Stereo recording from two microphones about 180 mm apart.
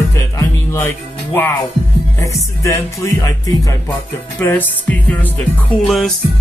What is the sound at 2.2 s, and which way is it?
Speech, 15° left (ahead or behind).